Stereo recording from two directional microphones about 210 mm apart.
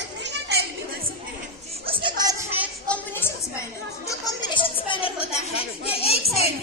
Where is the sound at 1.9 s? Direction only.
20° right (ahead or behind).